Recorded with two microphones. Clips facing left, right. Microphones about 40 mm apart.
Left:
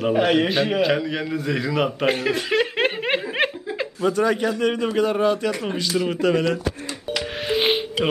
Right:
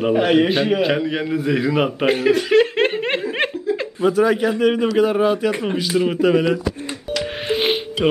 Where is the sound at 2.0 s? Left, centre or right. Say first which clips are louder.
Right 5 dB; centre.